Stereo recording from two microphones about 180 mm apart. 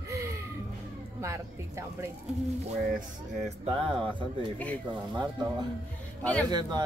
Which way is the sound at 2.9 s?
35° right (ahead or behind).